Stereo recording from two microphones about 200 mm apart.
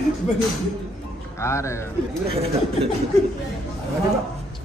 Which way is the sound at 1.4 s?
15° left (ahead or behind).